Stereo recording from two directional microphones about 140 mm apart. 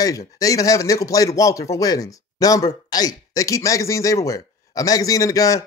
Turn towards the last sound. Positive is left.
turn(degrees=25)  # may be behind; listen again after turning